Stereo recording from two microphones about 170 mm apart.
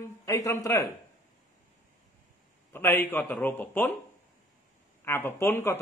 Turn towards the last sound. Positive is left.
turn(degrees=15)  # may be behind; listen again after turning